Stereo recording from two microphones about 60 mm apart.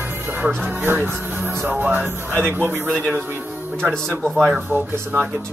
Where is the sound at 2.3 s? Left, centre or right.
Right.